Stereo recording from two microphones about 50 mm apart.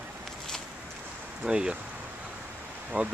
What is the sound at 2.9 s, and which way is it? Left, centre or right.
Speech, right.